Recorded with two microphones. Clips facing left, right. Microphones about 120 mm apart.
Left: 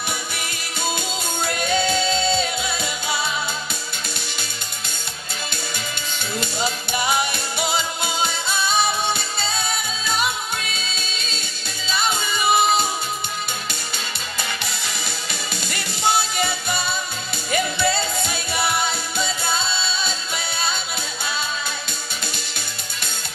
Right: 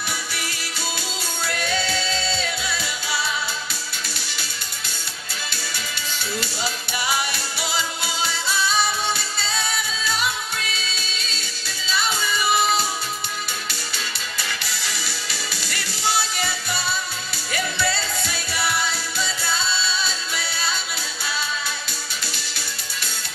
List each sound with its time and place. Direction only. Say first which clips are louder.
1.4 s music: left 4 dB; 20° left (ahead or behind)
6.4 s music: left 4 dB; 20° left (ahead or behind)
11.9 s music: left 1 dB; 20° left (ahead or behind)
14.6 s music: left 1 dB; 20° left (ahead or behind)